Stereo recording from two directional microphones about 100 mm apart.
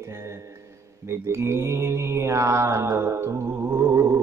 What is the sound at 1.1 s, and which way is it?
Mantra, 25° right (ahead or behind).